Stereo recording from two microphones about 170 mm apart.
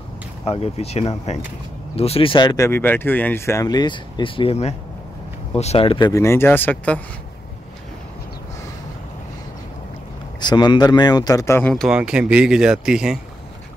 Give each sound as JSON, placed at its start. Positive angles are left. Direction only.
{"t": 0.5, "sound": "speech", "side_deg": 35}
{"t": 6.2, "sound": "speech", "side_deg": 15}
{"t": 10.4, "sound": "speech", "side_deg": 25}
{"t": 11.7, "sound": "speech", "side_deg": 0}